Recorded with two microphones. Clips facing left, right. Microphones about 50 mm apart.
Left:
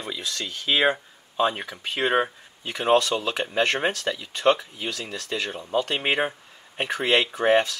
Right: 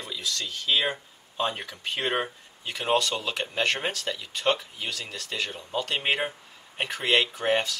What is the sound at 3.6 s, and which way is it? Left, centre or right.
Speech, left.